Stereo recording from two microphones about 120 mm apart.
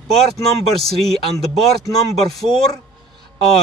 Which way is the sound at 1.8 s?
25° left (ahead or behind).